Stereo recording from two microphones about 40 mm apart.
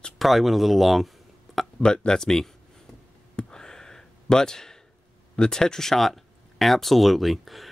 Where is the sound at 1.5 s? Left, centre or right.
Centre.